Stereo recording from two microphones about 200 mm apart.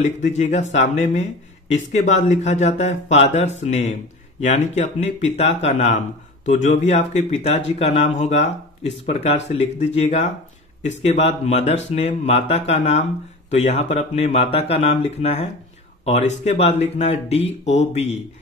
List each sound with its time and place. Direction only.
0.4 s speech: 35° left (ahead or behind)